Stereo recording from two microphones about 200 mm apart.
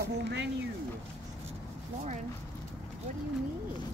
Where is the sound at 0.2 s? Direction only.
60° right (ahead or behind).